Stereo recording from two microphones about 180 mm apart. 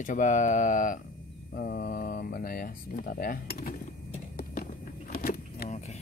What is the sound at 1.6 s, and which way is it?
Speech, 60° left (ahead or behind).